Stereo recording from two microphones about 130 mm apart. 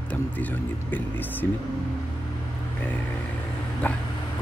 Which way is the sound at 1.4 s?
20° left (ahead or behind).